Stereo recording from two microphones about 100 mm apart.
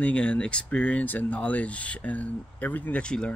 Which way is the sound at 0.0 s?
10° left (ahead or behind).